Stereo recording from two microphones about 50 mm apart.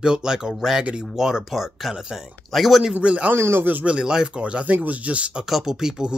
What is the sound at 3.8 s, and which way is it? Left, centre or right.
Speech, centre.